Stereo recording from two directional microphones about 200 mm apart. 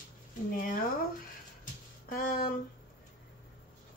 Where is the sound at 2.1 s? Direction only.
45° left (ahead or behind).